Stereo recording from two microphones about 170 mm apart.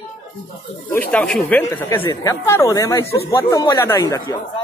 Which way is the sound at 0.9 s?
5° left (ahead or behind).